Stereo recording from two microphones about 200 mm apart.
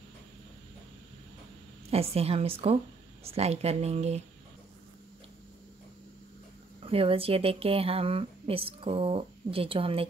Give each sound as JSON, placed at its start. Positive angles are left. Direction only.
{"t": 1.9, "sound": "speech", "side_deg": -30}
{"t": 6.8, "sound": "speech", "side_deg": -30}